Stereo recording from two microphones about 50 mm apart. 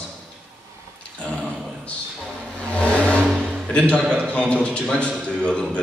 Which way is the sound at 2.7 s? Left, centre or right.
Left.